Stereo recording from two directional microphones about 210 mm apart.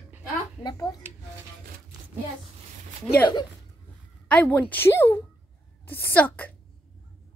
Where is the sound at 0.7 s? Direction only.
15° left (ahead or behind).